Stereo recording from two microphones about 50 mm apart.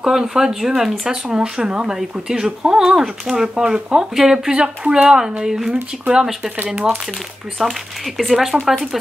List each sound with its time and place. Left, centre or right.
0.0 s speech: centre
4.5 s speech: centre
5.4 s speech: centre
7.6 s speech: centre